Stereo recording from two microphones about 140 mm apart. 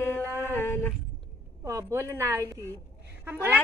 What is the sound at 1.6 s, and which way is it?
A woman's voice, 20° right (ahead or behind).